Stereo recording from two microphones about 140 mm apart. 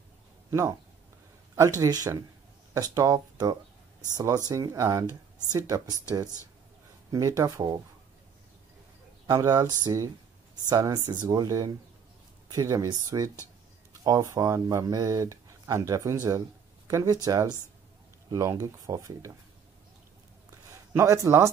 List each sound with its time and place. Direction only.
0.5 s speech: 20° right (ahead or behind)
7.1 s speech: 25° right (ahead or behind)
9.3 s speech: 25° right (ahead or behind)
20.7 s a man's voice: 20° right (ahead or behind)